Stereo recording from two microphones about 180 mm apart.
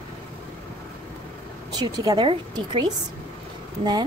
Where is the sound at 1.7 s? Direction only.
20° right (ahead or behind).